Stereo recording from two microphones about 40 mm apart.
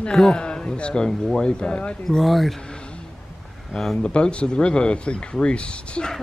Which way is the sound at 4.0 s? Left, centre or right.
Left.